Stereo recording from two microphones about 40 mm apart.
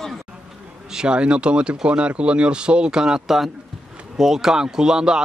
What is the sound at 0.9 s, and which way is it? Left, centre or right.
A man's voice, right.